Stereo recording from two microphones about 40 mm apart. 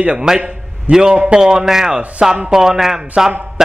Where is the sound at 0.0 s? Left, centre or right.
Right.